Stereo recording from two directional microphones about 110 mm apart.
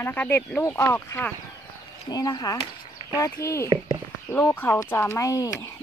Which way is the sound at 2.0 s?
35° left (ahead or behind).